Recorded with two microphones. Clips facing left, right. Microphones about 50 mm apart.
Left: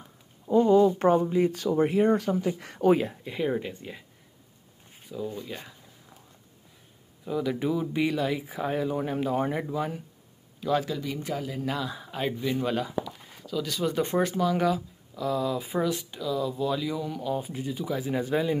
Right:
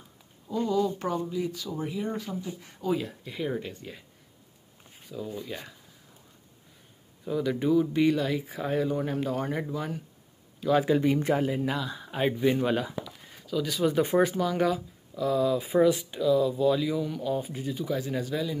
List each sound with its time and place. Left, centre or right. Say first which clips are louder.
0.5 s speech: left 7 dB; left
3.3 s speech: left 1 dB; centre
5.0 s speech: left 2 dB; centre
7.2 s speech: right 1 dB; centre
10.9 s speech: right 8 dB; right
11.6 s speech: even; centre
12.1 s speech: right 5 dB; centre
18.3 s speech: left 7 dB; left